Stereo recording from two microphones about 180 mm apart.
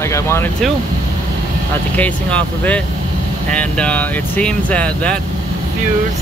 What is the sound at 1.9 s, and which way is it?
Speech, 10° left (ahead or behind).